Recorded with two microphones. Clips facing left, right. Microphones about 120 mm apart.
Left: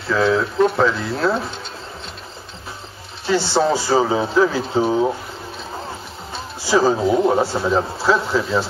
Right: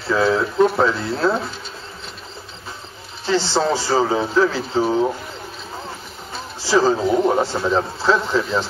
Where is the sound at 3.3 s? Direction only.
10° left (ahead or behind).